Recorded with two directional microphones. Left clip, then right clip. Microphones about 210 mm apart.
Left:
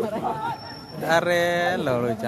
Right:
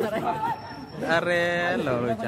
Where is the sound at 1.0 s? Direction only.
15° left (ahead or behind).